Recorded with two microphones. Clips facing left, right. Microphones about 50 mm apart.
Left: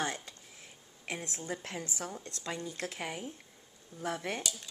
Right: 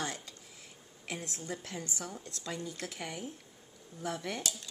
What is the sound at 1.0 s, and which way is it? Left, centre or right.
Speech, left.